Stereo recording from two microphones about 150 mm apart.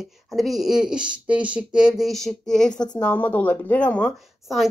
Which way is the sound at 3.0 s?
10° left (ahead or behind).